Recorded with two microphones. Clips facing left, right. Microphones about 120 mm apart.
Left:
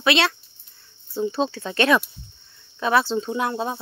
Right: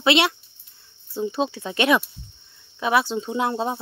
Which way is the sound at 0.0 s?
20° right (ahead or behind).